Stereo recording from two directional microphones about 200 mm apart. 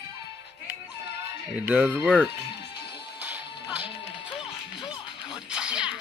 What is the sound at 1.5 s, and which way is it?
Speech, 5° right (ahead or behind).